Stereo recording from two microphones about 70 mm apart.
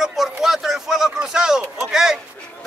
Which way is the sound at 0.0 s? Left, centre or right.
Centre.